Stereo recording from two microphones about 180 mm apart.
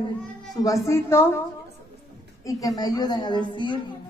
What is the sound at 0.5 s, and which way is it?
Speech, 15° left (ahead or behind).